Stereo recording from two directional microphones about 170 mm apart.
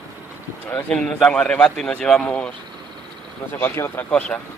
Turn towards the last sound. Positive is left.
turn(degrees=5)  # may be behind; listen again after turning